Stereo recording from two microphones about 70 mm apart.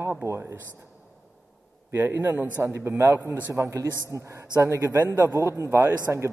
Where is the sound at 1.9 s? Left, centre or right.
Right.